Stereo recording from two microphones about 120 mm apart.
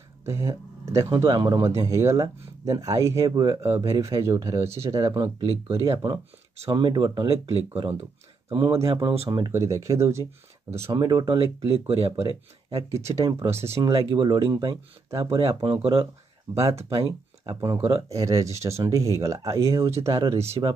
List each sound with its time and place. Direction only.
0.2 s speech: 25° right (ahead or behind)
5.8 s speech: 45° right (ahead or behind)
7.4 s speech: 55° right (ahead or behind)
8.5 s speech: 30° right (ahead or behind)
8.8 s speech: 50° right (ahead or behind)
9.5 s speech: 25° right (ahead or behind)
10.9 s speech: 35° right (ahead or behind)
11.3 s speech: 50° right (ahead or behind)
12.9 s speech: 25° right (ahead or behind)
13.9 s speech: 50° right (ahead or behind)
14.2 s speech: 35° right (ahead or behind)
15.0 s speech: 25° right (ahead or behind)
15.3 s speech: 50° right (ahead or behind)
17.5 s speech: 25° right (ahead or behind)